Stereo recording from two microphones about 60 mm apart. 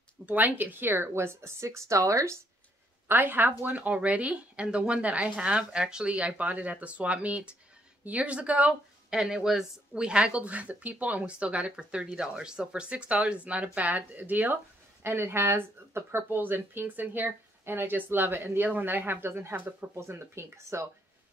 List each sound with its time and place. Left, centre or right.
0.3 s a woman's voice: right
3.1 s speech: right; by 9.2 s centre
9.2 s speech: centre; by 14.6 s right
15.0 s speech: right
19.5 s speech: right
19.9 s a woman's voice: right